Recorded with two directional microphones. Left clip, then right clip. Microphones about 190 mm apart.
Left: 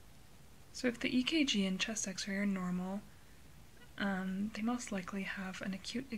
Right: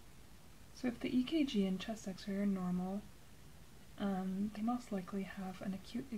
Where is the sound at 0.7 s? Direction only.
Centre (ahead or behind).